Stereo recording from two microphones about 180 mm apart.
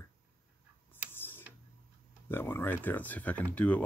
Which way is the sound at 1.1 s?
10° left (ahead or behind).